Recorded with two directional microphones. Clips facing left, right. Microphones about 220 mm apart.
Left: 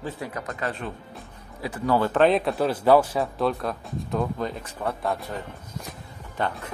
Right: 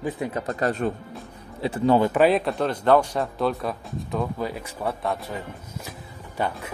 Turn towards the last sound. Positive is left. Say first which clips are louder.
# right 1 dB
turn(degrees=-10)  # may be behind; listen again after turning